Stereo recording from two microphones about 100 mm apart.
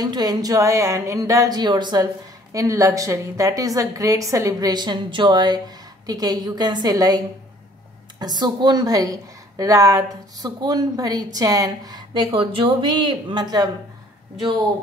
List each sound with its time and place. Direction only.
0.0 s a woman's voice: 40° right (ahead or behind)
2.5 s a woman's voice: 30° right (ahead or behind)
12.3 s speech: 65° right (ahead or behind); by 13.7 s 45° right (ahead or behind)